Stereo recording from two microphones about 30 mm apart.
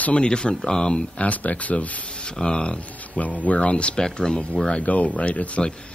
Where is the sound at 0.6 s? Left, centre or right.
Centre.